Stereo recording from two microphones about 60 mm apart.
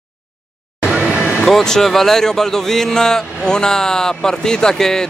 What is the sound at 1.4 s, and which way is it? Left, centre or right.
Speech, centre.